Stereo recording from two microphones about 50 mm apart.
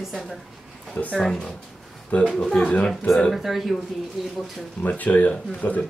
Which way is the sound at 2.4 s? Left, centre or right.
Left.